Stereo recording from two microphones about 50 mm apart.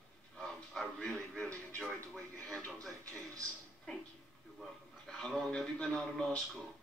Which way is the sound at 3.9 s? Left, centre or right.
Centre.